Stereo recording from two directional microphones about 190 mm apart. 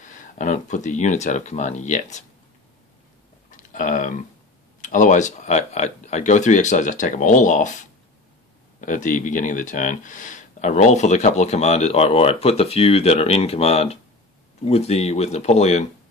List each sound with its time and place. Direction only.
0.0 s speech: 40° left (ahead or behind)
3.7 s burping: 45° left (ahead or behind)
4.8 s speech: 45° left (ahead or behind)
8.8 s speech: 45° left (ahead or behind)